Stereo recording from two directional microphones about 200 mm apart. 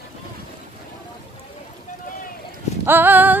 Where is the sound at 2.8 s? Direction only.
10° right (ahead or behind).